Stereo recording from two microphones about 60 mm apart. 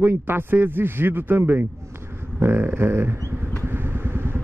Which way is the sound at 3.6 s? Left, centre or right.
Right.